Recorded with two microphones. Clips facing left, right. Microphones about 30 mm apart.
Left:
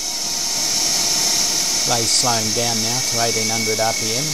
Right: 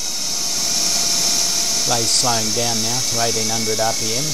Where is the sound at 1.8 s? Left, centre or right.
Centre.